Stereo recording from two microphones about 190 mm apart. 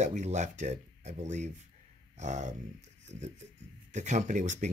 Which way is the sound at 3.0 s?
40° right (ahead or behind).